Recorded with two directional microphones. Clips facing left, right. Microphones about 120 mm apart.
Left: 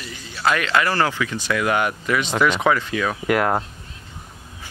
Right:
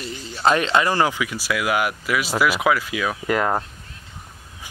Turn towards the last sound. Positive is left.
turn(degrees=5)  # may be behind; listen again after turning